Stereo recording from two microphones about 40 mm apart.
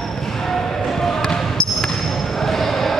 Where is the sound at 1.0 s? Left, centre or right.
Centre.